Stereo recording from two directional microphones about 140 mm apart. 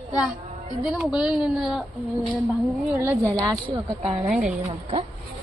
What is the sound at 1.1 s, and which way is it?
Speech, 5° right (ahead or behind).